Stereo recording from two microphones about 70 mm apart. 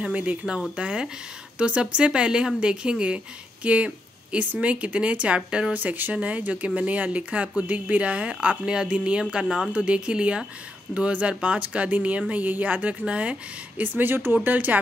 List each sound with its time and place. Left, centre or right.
0.0 s speech: centre